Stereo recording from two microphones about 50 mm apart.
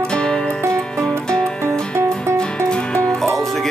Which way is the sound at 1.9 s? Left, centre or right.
Right.